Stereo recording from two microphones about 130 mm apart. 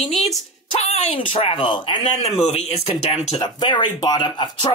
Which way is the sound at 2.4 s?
55° left (ahead or behind).